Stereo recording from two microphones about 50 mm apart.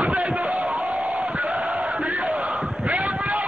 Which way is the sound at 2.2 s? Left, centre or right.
Centre.